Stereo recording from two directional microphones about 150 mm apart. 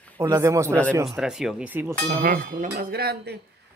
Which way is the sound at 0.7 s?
10° left (ahead or behind).